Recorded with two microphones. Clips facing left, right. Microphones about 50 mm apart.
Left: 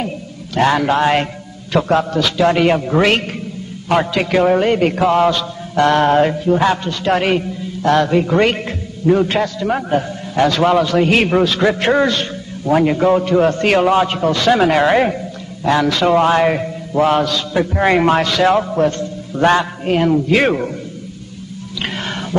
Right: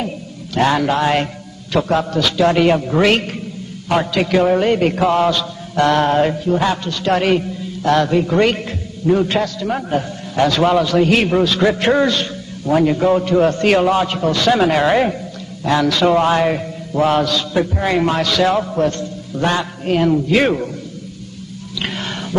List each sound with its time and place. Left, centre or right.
0.7 s a man's voice: left
17.0 s a man's voice: left
21.7 s whispering: left